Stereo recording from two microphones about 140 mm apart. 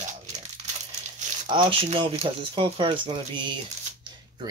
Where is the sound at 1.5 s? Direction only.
35° right (ahead or behind).